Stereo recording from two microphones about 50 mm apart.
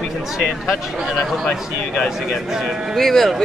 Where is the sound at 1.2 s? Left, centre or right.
Centre.